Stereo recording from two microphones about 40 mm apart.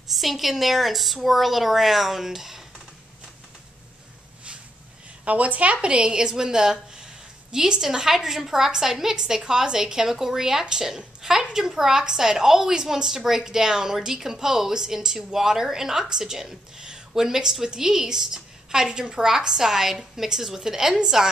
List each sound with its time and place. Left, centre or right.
0.1 s a woman's voice: centre
5.2 s a woman's voice: right; by 21.3 s centre